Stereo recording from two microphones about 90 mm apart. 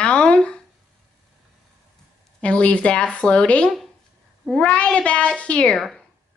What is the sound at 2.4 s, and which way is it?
Speech, 15° left (ahead or behind).